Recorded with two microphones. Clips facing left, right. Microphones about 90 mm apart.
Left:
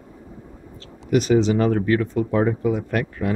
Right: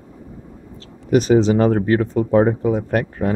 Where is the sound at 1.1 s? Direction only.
35° right (ahead or behind).